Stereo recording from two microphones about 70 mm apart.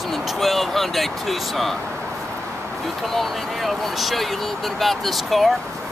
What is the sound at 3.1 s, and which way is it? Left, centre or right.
Speech, centre.